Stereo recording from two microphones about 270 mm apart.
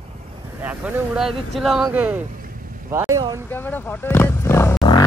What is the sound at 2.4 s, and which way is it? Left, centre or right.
Vehicle, right.